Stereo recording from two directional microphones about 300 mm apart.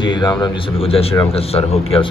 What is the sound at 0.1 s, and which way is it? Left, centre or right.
A man's voice, centre.